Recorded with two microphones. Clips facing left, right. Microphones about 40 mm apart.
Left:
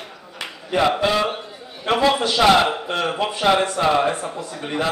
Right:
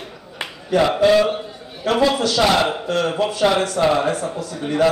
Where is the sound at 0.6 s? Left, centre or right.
Centre.